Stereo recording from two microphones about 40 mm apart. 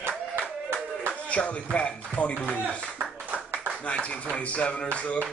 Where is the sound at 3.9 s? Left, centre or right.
Left.